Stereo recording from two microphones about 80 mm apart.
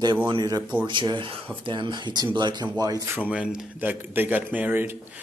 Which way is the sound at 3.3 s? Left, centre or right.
Centre.